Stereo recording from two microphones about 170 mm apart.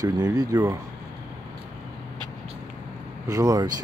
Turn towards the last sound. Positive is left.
turn(degrees=-20)  # may be behind; listen again after turning